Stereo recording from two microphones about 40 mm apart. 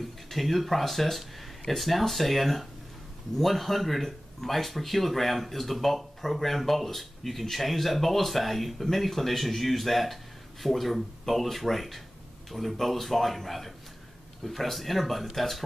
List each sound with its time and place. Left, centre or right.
0.3 s speech: centre